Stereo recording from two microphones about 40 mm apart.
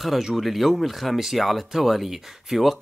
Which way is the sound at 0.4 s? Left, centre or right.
Centre.